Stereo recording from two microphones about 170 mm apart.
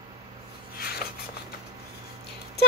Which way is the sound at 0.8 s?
65° left (ahead or behind).